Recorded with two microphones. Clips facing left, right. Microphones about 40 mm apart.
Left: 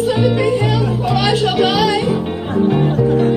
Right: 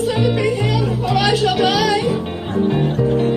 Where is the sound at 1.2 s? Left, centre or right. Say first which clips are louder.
Left 1 dB; left.